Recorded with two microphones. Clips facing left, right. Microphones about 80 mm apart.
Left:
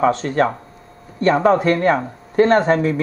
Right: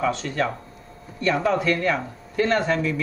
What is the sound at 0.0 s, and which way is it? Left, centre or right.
Speech, left.